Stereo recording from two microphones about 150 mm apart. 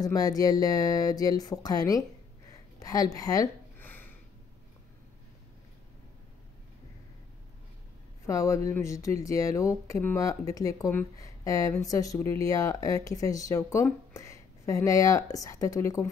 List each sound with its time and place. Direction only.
0.0 s speech: 25° left (ahead or behind)
3.8 s a sound: 10° left (ahead or behind)
8.3 s speech: 20° left (ahead or behind)